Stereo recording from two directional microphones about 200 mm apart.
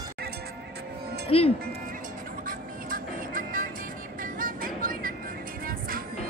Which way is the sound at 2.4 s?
45° right (ahead or behind).